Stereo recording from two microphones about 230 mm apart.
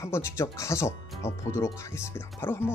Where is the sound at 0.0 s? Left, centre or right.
Centre.